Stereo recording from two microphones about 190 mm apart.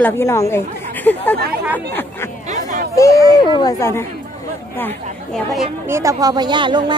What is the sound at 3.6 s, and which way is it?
A woman's voice, 15° left (ahead or behind).